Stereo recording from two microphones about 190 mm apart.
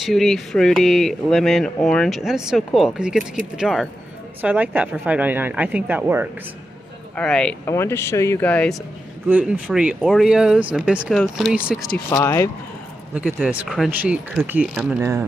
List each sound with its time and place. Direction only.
0.0 s a woman's voice: centre (ahead or behind)
7.2 s speech: 5° left (ahead or behind)
9.3 s a woman's voice: 5° right (ahead or behind)
12.1 s speech: 15° left (ahead or behind)
13.1 s a woman's voice: 5° right (ahead or behind)